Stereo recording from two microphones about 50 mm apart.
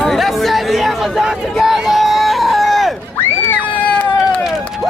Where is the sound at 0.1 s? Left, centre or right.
Centre.